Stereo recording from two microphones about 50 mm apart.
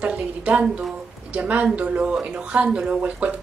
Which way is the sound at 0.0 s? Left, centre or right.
Right.